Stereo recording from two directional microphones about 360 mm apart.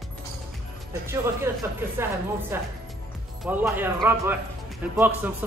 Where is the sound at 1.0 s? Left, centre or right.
Centre.